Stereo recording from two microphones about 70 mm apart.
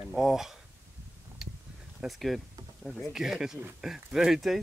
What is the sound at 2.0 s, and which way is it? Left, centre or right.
Speech, centre.